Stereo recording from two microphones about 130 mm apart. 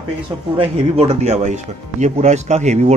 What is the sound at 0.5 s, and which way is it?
Speech, 50° right (ahead or behind).